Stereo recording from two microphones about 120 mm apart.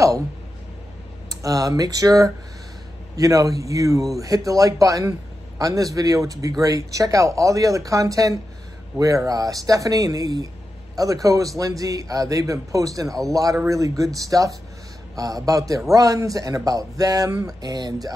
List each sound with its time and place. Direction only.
1.3 s a man's voice: 30° right (ahead or behind)